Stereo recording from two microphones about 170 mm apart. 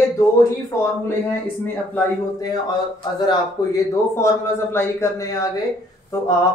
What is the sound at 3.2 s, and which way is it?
Speech, 20° left (ahead or behind).